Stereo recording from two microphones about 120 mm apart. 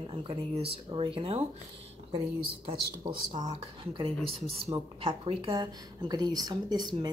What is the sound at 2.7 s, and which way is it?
Speech, 45° right (ahead or behind).